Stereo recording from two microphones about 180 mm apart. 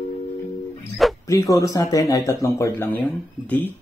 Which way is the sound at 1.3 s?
15° left (ahead or behind).